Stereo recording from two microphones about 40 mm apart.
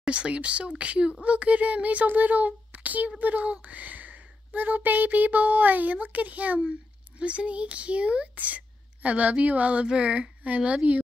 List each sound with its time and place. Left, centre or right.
0.0 s speech: right
7.2 s speech: right